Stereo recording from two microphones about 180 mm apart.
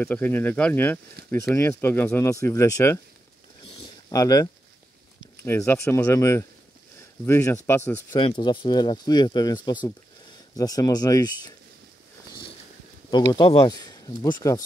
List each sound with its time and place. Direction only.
0.0 s speech: 10° left (ahead or behind)
4.1 s speech: 20° left (ahead or behind)
8.1 s speech: 25° left (ahead or behind)
13.1 s speech: 25° left (ahead or behind)